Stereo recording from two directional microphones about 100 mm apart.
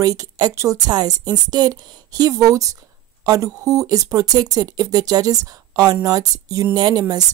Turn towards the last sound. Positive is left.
turn(degrees=-40)  # may be behind; listen again after turning